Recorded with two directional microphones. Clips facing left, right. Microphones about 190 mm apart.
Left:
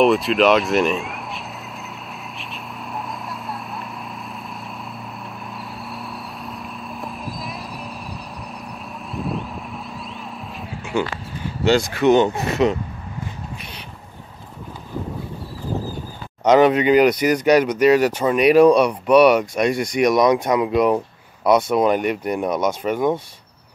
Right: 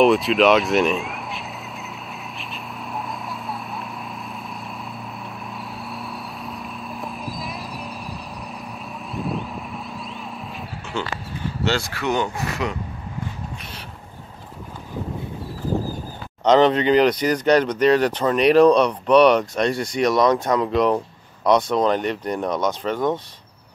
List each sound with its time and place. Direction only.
0.0 s speech: centre (ahead or behind)
2.3 s vehicle: centre (ahead or behind)
5.5 s a sound: centre (ahead or behind)
9.1 s vehicle: centre (ahead or behind)
10.9 s speech: 15° left (ahead or behind)
16.4 s speech: 10° left (ahead or behind)